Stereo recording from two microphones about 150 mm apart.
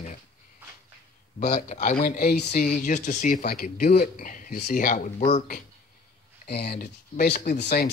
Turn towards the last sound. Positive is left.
turn(degrees=85)